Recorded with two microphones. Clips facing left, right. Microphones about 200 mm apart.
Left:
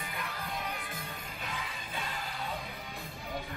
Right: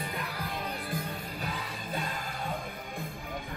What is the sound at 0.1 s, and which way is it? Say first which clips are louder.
Music: right 3 dB; 35° right (ahead or behind).